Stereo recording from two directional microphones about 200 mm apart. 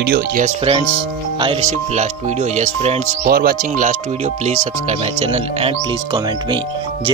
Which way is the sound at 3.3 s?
50° right (ahead or behind).